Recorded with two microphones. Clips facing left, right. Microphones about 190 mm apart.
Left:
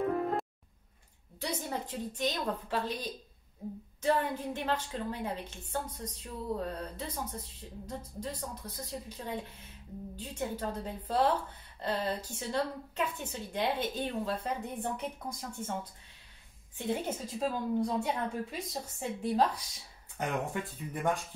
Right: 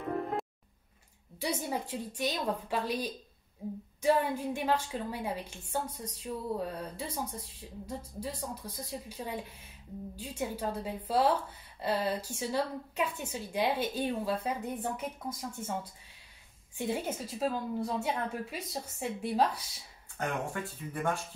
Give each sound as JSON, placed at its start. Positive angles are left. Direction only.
{"t": 1.4, "sound": "a woman's voice", "side_deg": -10}
{"t": 20.2, "sound": "speech", "side_deg": 20}